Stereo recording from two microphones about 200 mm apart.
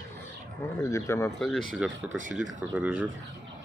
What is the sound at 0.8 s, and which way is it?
Speech, 15° left (ahead or behind).